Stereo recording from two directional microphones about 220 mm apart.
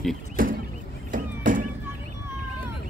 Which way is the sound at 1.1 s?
40° right (ahead or behind).